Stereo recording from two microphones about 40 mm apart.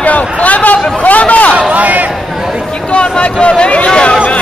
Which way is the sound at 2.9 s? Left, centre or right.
Left.